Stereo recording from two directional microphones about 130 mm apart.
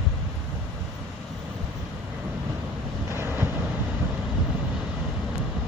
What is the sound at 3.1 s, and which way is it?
Vehicle, 20° right (ahead or behind).